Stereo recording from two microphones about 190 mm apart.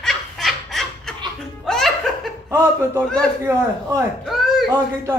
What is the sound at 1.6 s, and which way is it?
Music, centre (ahead or behind).